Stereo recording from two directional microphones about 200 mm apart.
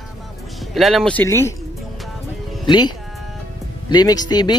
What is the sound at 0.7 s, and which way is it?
Speech, centre (ahead or behind).